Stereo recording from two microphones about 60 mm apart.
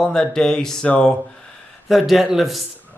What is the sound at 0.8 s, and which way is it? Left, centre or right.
Speech, left.